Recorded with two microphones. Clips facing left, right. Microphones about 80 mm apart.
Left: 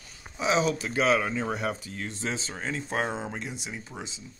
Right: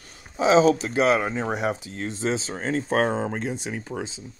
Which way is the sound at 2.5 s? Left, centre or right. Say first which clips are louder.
Right 7 dB; right.